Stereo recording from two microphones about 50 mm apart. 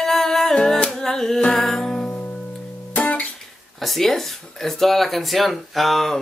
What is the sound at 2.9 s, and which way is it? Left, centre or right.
Music, left.